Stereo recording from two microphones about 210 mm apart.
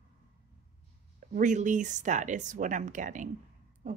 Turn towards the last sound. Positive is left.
turn(degrees=-40)  # may be behind; listen again after turning